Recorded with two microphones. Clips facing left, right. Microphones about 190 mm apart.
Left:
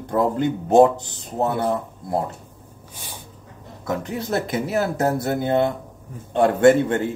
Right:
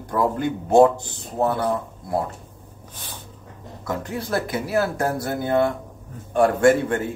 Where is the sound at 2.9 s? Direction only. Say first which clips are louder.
Left 1 dB; 10° left (ahead or behind).